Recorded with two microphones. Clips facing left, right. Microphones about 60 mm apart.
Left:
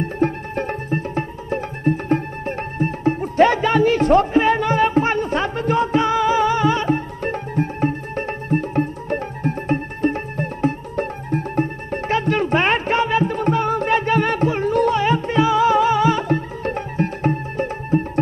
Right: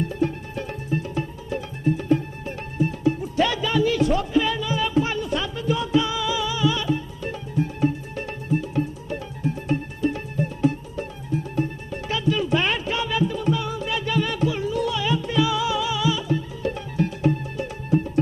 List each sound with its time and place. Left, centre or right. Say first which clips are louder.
0.0 s music: left 4 dB; left